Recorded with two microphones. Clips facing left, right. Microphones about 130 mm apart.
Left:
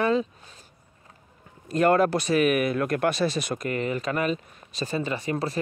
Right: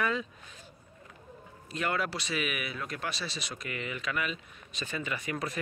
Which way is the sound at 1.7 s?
45° left (ahead or behind).